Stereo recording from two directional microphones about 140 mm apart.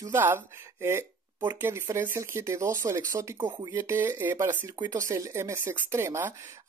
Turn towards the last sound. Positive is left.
turn(degrees=-20)  # may be behind; listen again after turning